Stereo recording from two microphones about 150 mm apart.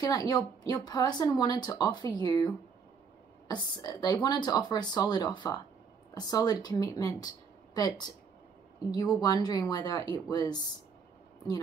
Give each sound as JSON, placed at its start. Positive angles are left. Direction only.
{"t": 0.0, "sound": "a woman's voice", "side_deg": 25}
{"t": 9.2, "sound": "a woman's voice", "side_deg": 25}